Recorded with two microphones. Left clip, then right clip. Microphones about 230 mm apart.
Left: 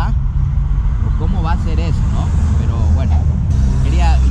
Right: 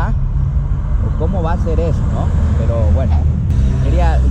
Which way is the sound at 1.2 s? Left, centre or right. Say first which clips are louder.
Right 4 dB; right.